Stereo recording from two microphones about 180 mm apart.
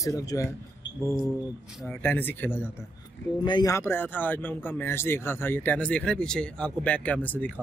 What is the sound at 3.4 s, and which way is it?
Speech, 20° left (ahead or behind).